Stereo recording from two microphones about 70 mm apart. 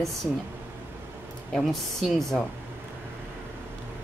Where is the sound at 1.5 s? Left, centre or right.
Centre.